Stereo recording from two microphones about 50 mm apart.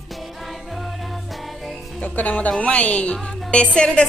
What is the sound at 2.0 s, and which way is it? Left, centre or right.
A woman's voice, left.